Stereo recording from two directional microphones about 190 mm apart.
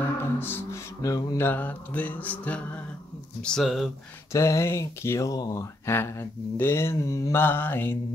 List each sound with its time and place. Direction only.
0.2 s speech: 10° left (ahead or behind)
4.3 s speech: 15° left (ahead or behind)